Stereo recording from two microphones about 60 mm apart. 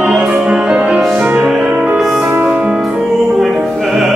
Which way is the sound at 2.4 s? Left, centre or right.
Centre.